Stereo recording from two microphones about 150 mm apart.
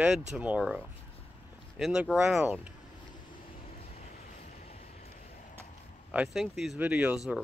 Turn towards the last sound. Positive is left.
turn(degrees=-5)  # may be behind; listen again after turning